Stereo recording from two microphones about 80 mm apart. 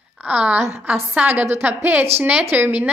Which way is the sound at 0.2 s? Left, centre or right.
Centre.